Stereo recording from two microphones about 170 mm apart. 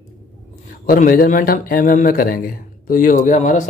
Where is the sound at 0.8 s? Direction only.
55° left (ahead or behind).